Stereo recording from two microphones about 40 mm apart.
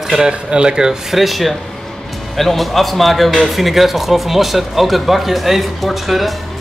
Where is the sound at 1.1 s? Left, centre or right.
Centre.